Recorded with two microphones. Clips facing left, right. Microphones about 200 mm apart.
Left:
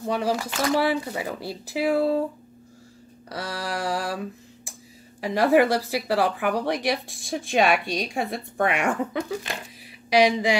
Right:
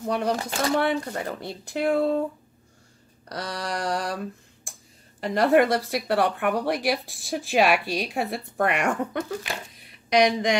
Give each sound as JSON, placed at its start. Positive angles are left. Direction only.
{"t": 0.0, "sound": "speech", "side_deg": 0}
{"t": 0.5, "sound": "speech", "side_deg": -30}
{"t": 0.7, "sound": "speech", "side_deg": 5}
{"t": 3.3, "sound": "speech", "side_deg": 5}
{"t": 9.8, "sound": "a sound", "side_deg": 5}